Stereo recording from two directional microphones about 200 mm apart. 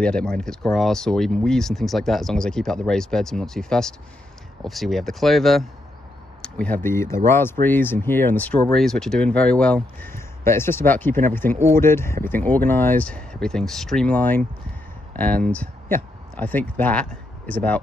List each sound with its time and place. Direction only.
0.0 s speech: 5° left (ahead or behind)